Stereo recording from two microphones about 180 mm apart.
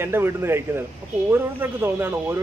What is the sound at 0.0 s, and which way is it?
A man's voice, 15° right (ahead or behind).